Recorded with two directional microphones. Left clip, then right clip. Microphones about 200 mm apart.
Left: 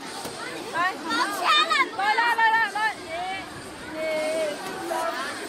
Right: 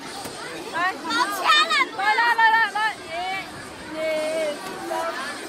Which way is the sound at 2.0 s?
15° right (ahead or behind).